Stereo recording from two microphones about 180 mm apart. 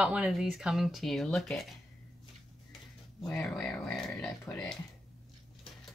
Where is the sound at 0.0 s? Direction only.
5° right (ahead or behind).